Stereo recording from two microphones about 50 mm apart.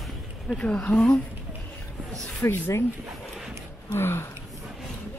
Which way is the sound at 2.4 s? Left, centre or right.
Left.